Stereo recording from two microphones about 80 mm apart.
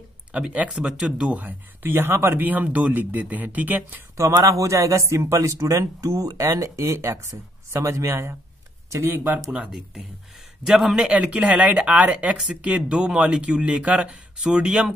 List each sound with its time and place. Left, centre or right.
0.3 s speech: centre
4.2 s a man's voice: right
9.1 s speech: right
10.6 s a man's voice: centre
11.1 s speech: centre